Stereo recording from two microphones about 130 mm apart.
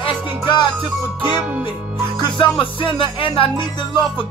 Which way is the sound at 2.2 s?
35° left (ahead or behind).